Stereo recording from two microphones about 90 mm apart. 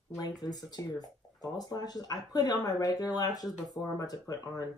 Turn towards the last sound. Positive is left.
turn(degrees=45)  # may be behind; listen again after turning